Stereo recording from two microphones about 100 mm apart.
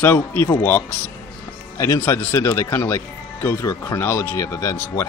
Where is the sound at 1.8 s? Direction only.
30° left (ahead or behind).